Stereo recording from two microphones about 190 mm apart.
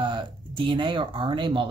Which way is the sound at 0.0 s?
25° right (ahead or behind).